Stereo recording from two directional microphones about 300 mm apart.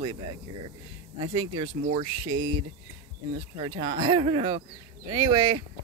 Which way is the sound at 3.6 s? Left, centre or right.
Centre.